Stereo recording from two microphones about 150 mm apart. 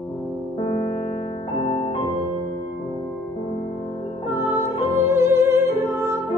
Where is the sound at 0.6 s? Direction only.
40° left (ahead or behind).